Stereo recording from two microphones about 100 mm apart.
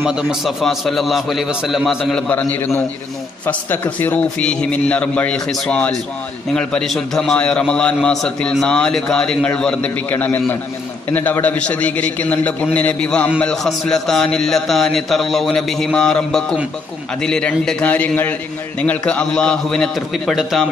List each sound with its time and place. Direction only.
0.0 s a man's voice: 5° right (ahead or behind)
2.3 s a man's voice: 20° left (ahead or behind)